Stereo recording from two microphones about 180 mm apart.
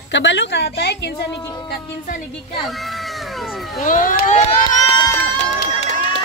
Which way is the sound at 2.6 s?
Centre (ahead or behind).